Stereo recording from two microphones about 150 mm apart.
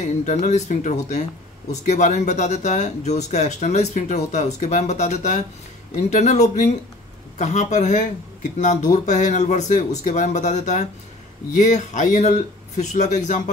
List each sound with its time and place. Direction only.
0.0 s speech: 50° left (ahead or behind)